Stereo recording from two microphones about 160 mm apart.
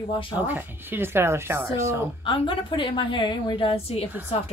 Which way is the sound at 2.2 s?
30° left (ahead or behind).